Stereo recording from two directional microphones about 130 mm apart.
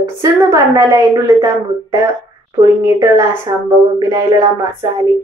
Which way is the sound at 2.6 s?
25° right (ahead or behind).